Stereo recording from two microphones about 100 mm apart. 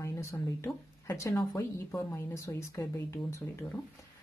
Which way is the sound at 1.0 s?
30° left (ahead or behind).